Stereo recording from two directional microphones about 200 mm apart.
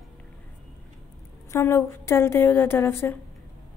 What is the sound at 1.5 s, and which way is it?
A woman's voice, 15° left (ahead or behind).